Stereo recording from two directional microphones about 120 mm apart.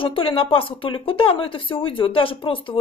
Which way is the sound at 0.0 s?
50° left (ahead or behind).